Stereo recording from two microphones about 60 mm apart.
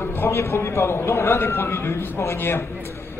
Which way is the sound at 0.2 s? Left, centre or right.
Left.